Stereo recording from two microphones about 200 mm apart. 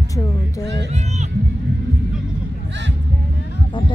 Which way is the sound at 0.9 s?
35° right (ahead or behind).